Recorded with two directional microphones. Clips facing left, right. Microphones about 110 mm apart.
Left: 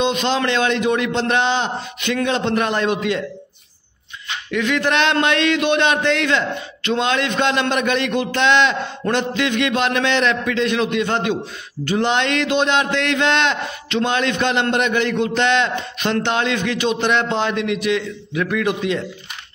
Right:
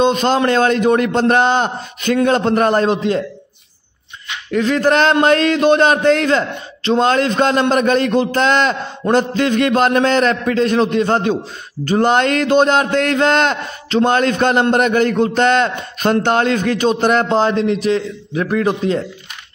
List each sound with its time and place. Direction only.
0.0 s a man's voice: 45° right (ahead or behind)
4.5 s a man's voice: 40° right (ahead or behind)